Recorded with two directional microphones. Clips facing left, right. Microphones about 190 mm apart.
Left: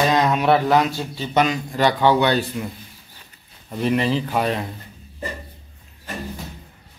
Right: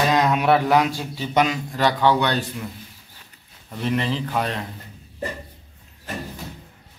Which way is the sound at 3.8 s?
10° left (ahead or behind).